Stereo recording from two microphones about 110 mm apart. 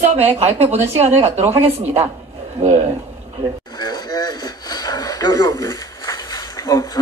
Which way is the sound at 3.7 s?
35° left (ahead or behind).